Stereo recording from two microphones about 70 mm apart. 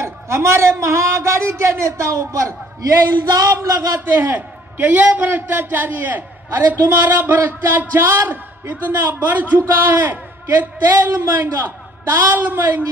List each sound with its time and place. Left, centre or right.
0.0 s a man's voice: right
3.3 s a sound: right
4.0 s a man's voice: right